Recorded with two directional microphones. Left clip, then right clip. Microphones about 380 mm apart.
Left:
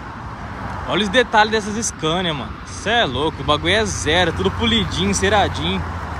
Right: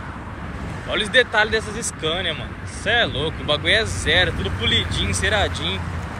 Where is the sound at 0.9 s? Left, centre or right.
Centre.